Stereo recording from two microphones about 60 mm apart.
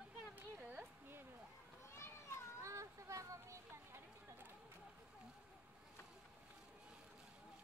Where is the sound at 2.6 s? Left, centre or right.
Right.